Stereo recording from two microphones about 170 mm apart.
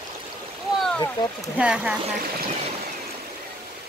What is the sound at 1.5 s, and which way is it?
Speech, 5° right (ahead or behind).